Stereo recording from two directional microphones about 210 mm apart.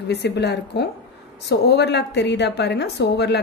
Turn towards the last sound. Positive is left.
turn(degrees=55)  # may be behind; listen again after turning